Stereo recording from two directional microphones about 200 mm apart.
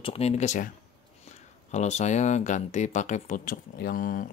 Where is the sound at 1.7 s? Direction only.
35° left (ahead or behind).